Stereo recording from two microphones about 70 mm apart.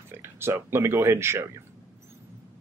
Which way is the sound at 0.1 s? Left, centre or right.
Right.